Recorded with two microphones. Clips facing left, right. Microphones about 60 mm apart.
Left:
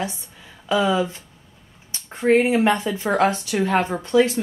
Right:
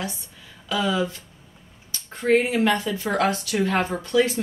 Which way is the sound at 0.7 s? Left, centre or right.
Left.